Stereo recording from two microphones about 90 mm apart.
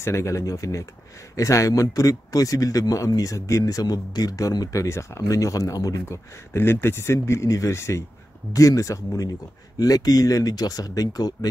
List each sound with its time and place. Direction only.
0.0 s a man's voice: 30° left (ahead or behind)
6.0 s speech: 25° left (ahead or behind); by 11.3 s 45° left (ahead or behind)